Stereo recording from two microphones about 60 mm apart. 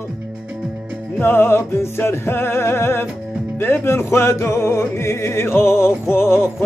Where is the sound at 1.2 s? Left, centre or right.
Left.